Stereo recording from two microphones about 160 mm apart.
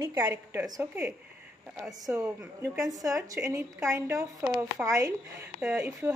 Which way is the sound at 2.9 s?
20° right (ahead or behind).